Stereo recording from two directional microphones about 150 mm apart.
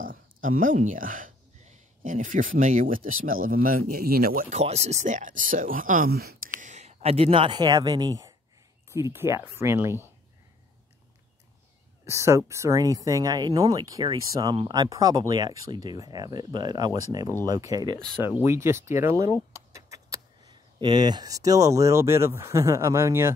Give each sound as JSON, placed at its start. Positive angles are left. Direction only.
{"t": 0.0, "sound": "speech", "side_deg": -65}
{"t": 4.6, "sound": "speech", "side_deg": -45}
{"t": 6.6, "sound": "speech", "side_deg": -50}
{"t": 12.1, "sound": "speech", "side_deg": -20}